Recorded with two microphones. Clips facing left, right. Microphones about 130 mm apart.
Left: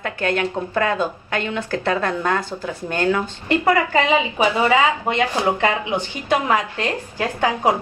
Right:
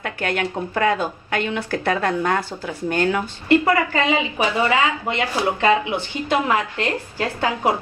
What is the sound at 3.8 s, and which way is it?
A woman's voice, 20° left (ahead or behind).